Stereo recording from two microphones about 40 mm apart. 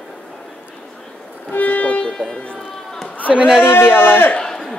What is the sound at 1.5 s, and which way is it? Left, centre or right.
Music, left.